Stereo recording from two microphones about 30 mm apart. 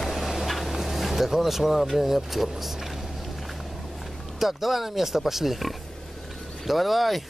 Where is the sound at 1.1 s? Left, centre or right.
Centre.